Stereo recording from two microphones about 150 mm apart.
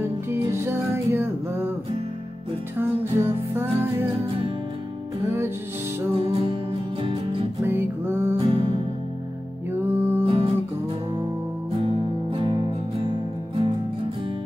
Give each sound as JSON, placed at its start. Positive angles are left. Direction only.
{"t": 0.0, "sound": "music", "side_deg": -15}
{"t": 2.8, "sound": "music", "side_deg": -15}
{"t": 5.2, "sound": "music", "side_deg": -15}
{"t": 6.1, "sound": "music", "side_deg": -35}
{"t": 7.6, "sound": "music", "side_deg": -15}
{"t": 8.4, "sound": "music", "side_deg": -35}
{"t": 9.7, "sound": "music", "side_deg": -15}
{"t": 10.2, "sound": "music", "side_deg": -40}
{"t": 11.7, "sound": "music", "side_deg": -35}